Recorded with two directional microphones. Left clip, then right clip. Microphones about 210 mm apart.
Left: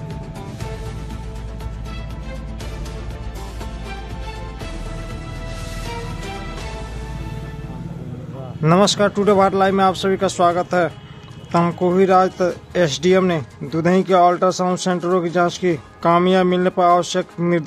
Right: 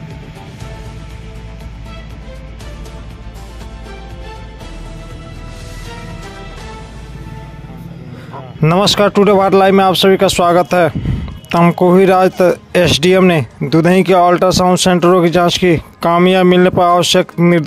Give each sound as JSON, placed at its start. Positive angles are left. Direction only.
{"t": 8.5, "sound": "speech", "side_deg": -40}